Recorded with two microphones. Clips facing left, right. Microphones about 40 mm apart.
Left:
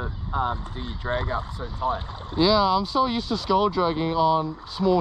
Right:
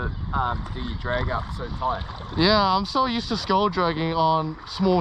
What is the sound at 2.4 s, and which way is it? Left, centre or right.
Speech, right.